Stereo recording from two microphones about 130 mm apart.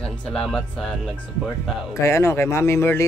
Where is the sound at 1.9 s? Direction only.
20° left (ahead or behind).